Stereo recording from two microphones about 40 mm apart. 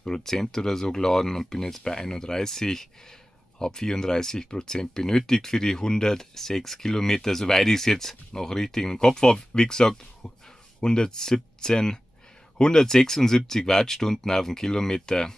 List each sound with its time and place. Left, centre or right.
0.0 s speech: centre